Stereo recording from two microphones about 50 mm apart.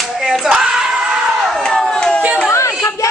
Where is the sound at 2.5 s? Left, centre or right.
Left.